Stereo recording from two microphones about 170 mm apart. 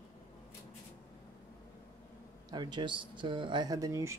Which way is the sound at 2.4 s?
25° right (ahead or behind).